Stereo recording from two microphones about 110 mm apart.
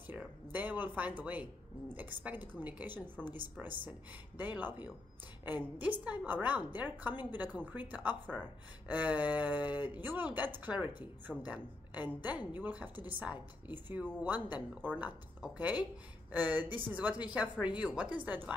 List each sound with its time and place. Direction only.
0.5 s a woman's voice: 15° right (ahead or behind)